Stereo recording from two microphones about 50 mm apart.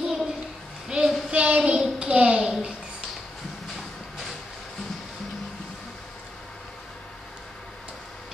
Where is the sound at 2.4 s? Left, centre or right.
Centre.